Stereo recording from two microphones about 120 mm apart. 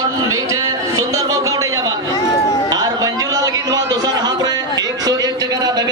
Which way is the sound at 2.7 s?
30° right (ahead or behind).